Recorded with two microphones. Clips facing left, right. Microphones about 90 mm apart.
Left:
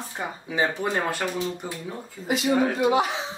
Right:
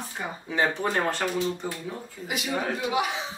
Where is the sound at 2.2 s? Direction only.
30° left (ahead or behind).